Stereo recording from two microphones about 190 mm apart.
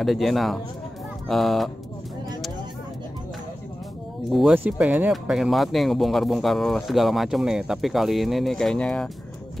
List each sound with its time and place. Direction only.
0.0 s speech: centre (ahead or behind)
4.3 s speech: centre (ahead or behind)